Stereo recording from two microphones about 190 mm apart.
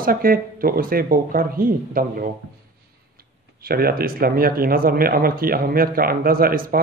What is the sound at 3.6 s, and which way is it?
A man's voice, 55° right (ahead or behind).